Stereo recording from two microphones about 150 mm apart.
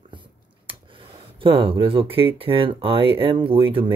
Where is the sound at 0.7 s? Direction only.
35° right (ahead or behind).